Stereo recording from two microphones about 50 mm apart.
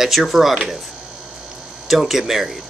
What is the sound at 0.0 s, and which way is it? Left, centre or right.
Speech, centre.